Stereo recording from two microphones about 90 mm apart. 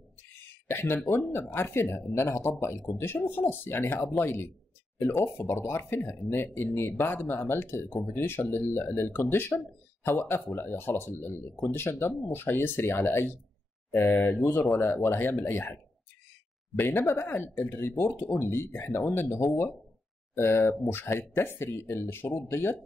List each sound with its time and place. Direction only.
0.7 s speech: 25° left (ahead or behind)